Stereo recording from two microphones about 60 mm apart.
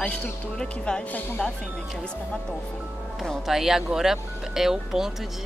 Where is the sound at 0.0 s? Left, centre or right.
Left.